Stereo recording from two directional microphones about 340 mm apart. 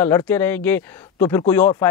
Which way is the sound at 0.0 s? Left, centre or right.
Centre.